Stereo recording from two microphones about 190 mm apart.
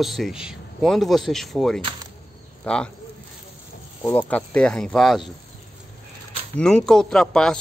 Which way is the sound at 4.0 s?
10° left (ahead or behind).